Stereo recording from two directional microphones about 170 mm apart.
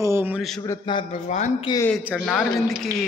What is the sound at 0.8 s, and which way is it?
Speech, 30° left (ahead or behind).